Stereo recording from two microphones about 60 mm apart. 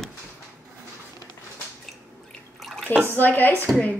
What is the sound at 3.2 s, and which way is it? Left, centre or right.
Dishes, left.